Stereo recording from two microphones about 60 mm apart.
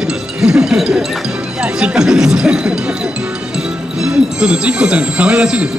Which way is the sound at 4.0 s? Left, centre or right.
Centre.